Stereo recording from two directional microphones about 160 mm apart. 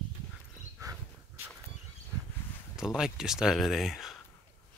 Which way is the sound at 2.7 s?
5° right (ahead or behind).